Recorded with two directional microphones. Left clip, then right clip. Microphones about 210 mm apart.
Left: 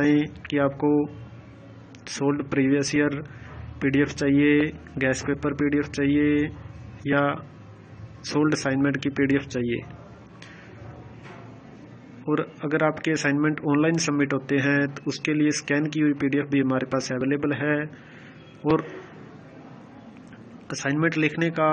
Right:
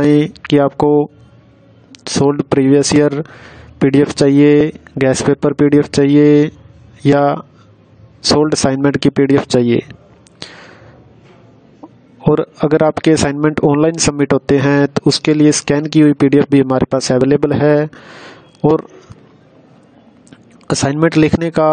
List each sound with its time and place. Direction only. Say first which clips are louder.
0.0 s speech: right 10 dB; 65° right (ahead or behind)
10.4 s a sound: right 15 dB; 65° right (ahead or behind)
12.3 s speech: right 13 dB; 65° right (ahead or behind)
20.6 s speech: right 11 dB; 65° right (ahead or behind)